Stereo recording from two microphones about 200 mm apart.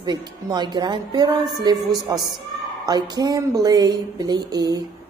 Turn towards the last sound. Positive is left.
turn(degrees=-20)  # may be behind; listen again after turning